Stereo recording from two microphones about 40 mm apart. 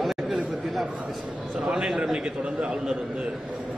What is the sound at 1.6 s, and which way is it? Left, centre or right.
A man's voice, centre.